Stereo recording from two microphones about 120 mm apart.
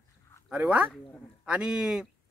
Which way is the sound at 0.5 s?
10° right (ahead or behind).